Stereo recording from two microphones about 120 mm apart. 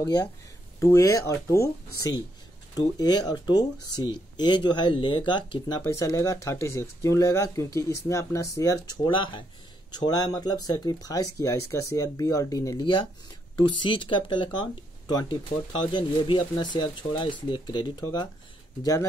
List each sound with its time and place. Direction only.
0.7 s speech: 25° left (ahead or behind)
5.9 s speech: 25° left (ahead or behind)
8.9 s speech: 40° left (ahead or behind)
13.6 s speech: 40° left (ahead or behind)